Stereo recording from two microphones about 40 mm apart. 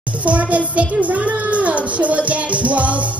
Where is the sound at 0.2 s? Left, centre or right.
Right.